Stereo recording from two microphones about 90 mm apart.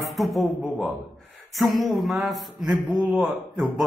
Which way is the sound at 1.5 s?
Centre (ahead or behind).